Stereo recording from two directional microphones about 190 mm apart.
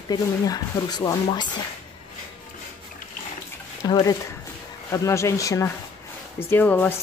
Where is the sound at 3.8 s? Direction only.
20° left (ahead or behind).